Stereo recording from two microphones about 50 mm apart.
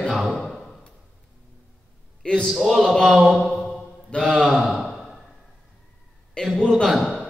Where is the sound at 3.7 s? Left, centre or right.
Centre.